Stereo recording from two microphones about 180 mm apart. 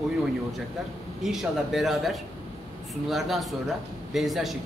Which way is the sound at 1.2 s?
Centre (ahead or behind).